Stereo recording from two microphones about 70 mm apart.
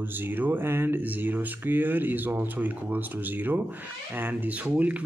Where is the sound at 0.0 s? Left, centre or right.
Right.